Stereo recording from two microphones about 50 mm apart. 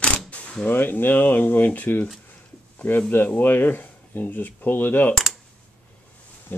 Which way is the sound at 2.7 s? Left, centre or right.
Left.